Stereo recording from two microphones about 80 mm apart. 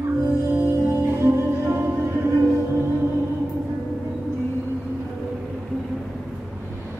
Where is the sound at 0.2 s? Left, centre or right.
Right.